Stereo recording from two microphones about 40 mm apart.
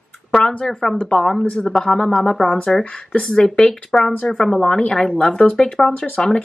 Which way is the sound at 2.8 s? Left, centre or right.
Left.